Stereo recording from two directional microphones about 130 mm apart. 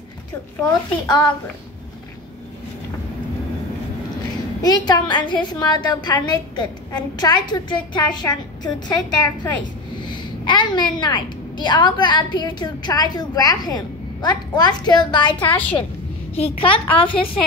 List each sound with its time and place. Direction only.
0.7 s a woman's voice: 35° left (ahead or behind)
4.6 s a woman's voice: 30° left (ahead or behind)
10.0 s a woman's voice: 35° left (ahead or behind)
15.4 s a woman's voice: 15° left (ahead or behind)
16.3 s a woman's voice: 45° left (ahead or behind)